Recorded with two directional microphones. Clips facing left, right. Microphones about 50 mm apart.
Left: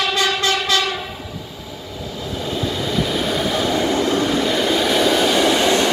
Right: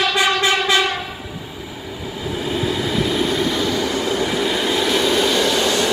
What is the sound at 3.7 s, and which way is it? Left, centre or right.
Vehicle, left.